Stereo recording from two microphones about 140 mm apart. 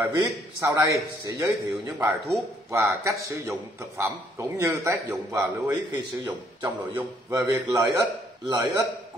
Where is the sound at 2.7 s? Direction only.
20° right (ahead or behind).